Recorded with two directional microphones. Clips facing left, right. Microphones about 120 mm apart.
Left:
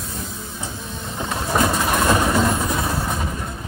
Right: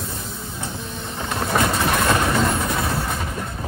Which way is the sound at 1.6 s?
5° left (ahead or behind).